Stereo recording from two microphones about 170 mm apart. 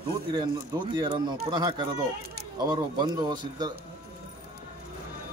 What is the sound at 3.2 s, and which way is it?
Speech, 25° right (ahead or behind).